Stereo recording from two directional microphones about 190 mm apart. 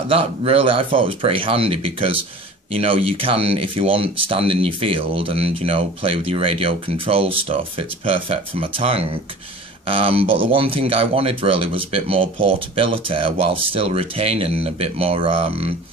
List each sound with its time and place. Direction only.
0.1 s speech: 30° right (ahead or behind)